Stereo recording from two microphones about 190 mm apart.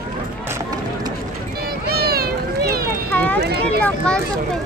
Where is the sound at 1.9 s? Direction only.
55° right (ahead or behind).